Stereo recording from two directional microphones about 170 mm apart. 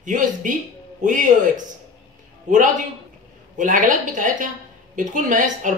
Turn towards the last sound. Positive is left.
turn(degrees=-50)  # may be behind; listen again after turning